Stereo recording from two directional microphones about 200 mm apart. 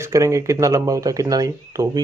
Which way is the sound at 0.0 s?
15° right (ahead or behind).